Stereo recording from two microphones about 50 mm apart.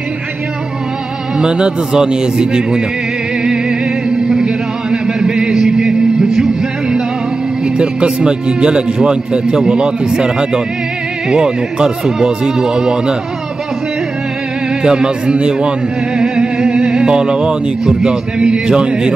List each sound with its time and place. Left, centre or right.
1.4 s a man's voice: centre
4.1 s music: centre
7.6 s a man's voice: centre
14.8 s a man's voice: centre